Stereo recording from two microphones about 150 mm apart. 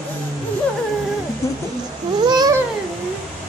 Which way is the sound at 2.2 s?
25° right (ahead or behind).